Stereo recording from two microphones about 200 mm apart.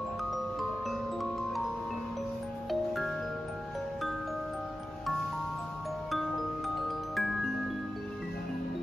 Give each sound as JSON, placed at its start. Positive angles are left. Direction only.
{"t": 0.2, "sound": "glockenspiel", "side_deg": 0}
{"t": 2.7, "sound": "music", "side_deg": 0}
{"t": 7.2, "sound": "music", "side_deg": 0}